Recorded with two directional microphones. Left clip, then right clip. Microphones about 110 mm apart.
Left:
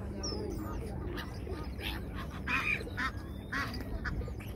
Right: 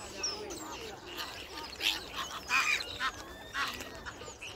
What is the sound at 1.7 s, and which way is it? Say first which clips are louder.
Duck: right 11 dB; centre (ahead or behind).